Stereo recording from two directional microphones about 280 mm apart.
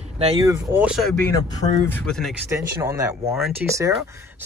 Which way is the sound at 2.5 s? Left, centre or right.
Centre.